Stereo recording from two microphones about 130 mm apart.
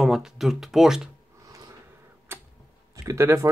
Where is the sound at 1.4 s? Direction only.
25° right (ahead or behind).